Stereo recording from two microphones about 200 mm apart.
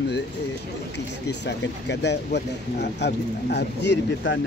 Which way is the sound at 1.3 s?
60° left (ahead or behind).